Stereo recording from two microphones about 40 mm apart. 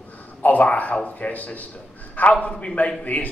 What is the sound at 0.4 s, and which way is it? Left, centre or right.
A man's voice, left.